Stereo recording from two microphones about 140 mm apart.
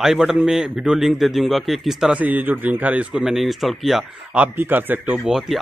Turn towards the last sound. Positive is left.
turn(degrees=0)  # may be behind; listen again after turning